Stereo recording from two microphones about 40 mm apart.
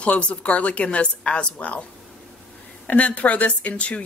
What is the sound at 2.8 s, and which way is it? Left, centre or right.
A woman's voice, left.